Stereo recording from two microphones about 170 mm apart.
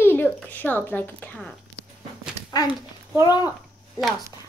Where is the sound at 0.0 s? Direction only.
10° left (ahead or behind).